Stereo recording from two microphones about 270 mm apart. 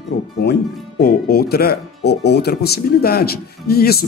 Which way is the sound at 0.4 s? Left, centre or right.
Left.